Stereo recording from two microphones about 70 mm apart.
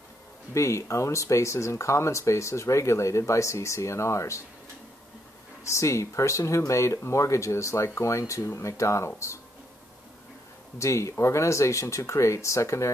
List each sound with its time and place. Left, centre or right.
0.6 s speech: left
5.6 s speech: left
10.8 s speech: left